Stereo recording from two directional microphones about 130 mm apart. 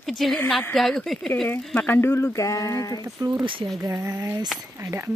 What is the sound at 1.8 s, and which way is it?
Speech, 20° left (ahead or behind).